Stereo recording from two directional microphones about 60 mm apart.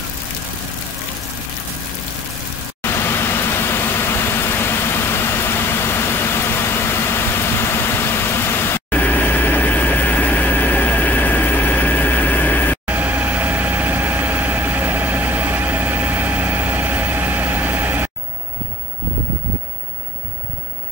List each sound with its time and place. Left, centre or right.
2.8 s vehicle: left
8.9 s vehicle: left
12.8 s vehicle: right